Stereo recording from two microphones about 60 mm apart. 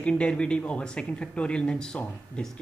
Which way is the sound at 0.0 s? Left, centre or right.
Centre.